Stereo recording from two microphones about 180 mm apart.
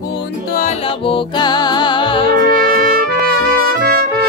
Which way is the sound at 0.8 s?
30° left (ahead or behind).